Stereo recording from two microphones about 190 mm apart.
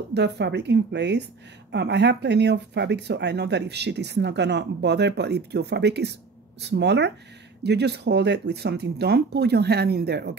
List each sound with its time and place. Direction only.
0.1 s speech: 65° right (ahead or behind)